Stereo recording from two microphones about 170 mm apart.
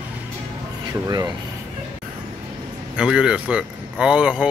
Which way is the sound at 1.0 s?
25° right (ahead or behind).